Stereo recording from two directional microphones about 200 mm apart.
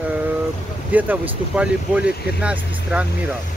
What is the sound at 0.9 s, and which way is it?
Speech, 10° right (ahead or behind).